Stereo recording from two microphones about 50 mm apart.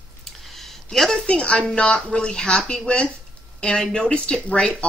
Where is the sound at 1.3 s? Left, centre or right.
Centre.